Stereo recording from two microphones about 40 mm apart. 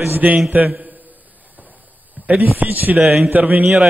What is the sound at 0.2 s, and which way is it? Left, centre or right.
Speech, right.